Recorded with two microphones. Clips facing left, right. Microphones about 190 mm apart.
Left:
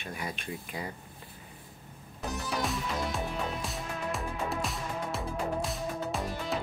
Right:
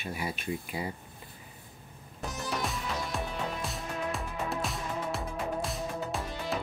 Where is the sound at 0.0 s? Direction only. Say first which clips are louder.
Right 3 dB; 5° right (ahead or behind).